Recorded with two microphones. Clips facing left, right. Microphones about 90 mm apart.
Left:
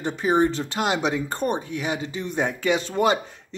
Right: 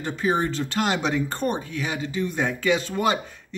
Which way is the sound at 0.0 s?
20° left (ahead or behind).